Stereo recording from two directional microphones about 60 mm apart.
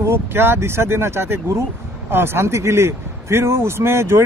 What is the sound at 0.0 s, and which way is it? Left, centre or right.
A man's voice, right.